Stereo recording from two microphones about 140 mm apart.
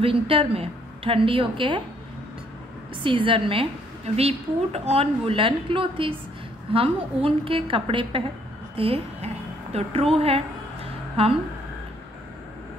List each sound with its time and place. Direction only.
0.0 s a woman's voice: 40° right (ahead or behind)
3.0 s a woman's voice: 40° right (ahead or behind)
8.7 s a sound: 45° right (ahead or behind)